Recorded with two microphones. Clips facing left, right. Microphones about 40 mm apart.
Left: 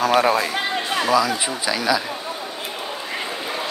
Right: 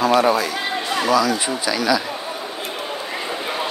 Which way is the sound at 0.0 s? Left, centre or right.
Left.